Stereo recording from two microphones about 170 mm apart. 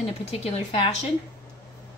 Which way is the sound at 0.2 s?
35° left (ahead or behind).